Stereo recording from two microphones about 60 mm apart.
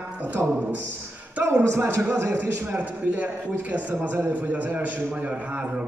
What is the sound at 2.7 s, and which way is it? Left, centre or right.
A man's voice, right.